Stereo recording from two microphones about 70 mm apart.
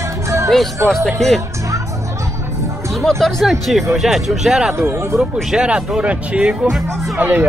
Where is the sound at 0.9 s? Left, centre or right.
Centre.